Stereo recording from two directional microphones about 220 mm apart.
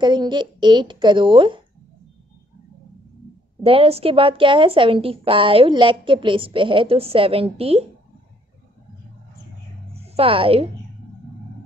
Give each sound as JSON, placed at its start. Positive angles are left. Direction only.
{"t": 0.0, "sound": "a woman's voice", "side_deg": -20}
{"t": 3.6, "sound": "a woman's voice", "side_deg": -25}
{"t": 9.9, "sound": "speech", "side_deg": -25}